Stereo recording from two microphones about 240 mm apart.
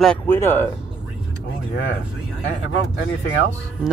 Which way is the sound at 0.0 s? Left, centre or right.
Centre.